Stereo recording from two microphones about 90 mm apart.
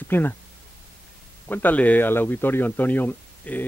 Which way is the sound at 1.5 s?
20° left (ahead or behind).